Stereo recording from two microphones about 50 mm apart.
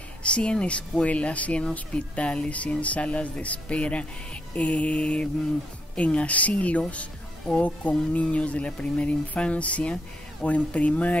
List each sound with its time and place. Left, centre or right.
0.2 s speech: left